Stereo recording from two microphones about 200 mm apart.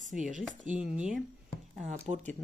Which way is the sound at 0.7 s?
5° right (ahead or behind).